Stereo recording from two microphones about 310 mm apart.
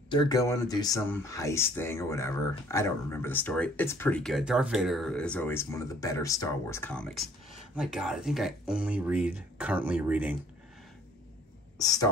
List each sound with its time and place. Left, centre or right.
0.1 s speech: centre
11.8 s speech: centre